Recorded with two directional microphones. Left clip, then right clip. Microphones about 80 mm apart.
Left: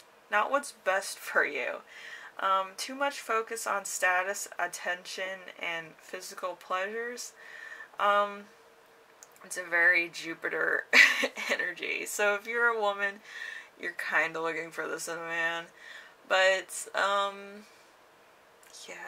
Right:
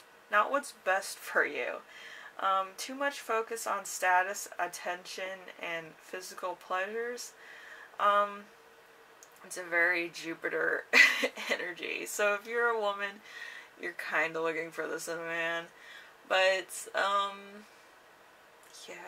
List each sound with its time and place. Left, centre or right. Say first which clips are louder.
0.3 s speech: left 1 dB; left
8.0 s speech: left 1 dB; left
9.5 s speech: left 4 dB; left
18.8 s a sound: left 3 dB; left